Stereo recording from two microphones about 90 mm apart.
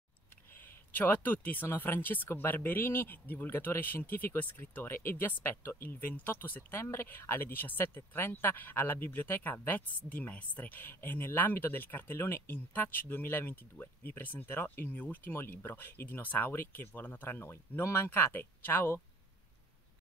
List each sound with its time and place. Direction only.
0.6 s speech: 20° left (ahead or behind)